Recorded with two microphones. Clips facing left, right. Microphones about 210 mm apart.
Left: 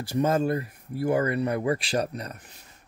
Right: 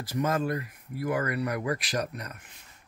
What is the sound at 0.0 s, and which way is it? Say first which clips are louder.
Speech: left 4 dB; 30° left (ahead or behind).